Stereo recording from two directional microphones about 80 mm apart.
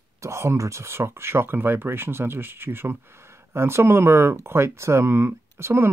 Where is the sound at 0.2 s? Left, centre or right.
Right.